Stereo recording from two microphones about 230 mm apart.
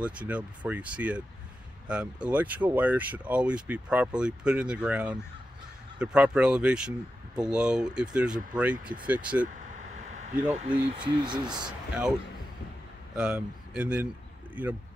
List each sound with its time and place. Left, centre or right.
0.0 s speech: centre
9.8 s a sound: right
10.9 s speech: centre
13.1 s speech: centre